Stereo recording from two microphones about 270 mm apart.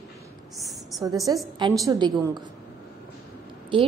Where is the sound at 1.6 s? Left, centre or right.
Centre.